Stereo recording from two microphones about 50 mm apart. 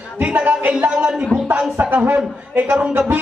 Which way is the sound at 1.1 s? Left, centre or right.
Centre.